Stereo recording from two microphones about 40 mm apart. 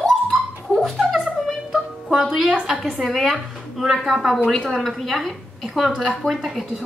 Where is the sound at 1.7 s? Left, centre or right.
Centre.